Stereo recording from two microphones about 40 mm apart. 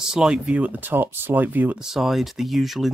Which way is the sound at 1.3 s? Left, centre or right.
Right.